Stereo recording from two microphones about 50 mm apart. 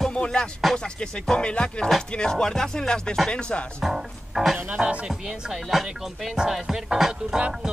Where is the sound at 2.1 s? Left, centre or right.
Centre.